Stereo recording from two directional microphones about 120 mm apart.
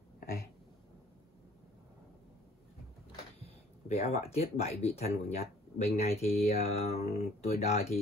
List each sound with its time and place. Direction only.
3.4 s speech: 60° left (ahead or behind)